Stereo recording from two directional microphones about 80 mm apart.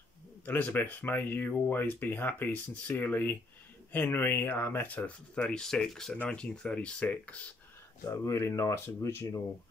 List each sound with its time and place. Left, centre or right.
0.5 s speech: left
8.1 s speech: left